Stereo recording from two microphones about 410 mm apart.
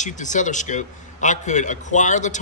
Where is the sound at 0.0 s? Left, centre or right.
Centre.